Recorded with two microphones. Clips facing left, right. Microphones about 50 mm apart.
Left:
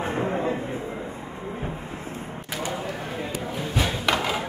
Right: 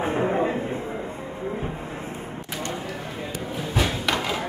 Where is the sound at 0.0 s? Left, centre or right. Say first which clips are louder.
Right 3 dB; centre.